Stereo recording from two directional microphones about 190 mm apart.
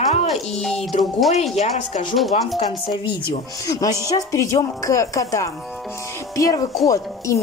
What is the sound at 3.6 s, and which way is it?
Speech, 15° left (ahead or behind).